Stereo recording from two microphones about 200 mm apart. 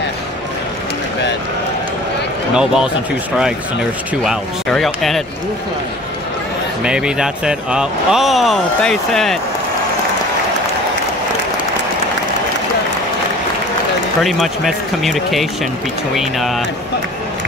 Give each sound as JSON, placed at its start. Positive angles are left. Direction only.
{"t": 2.5, "sound": "speech", "side_deg": -5}
{"t": 4.2, "sound": "speech", "side_deg": 0}
{"t": 6.8, "sound": "speech", "side_deg": -5}
{"t": 14.2, "sound": "speech", "side_deg": 0}